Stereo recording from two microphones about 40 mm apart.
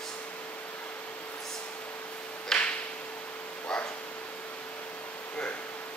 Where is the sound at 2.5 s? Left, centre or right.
Centre.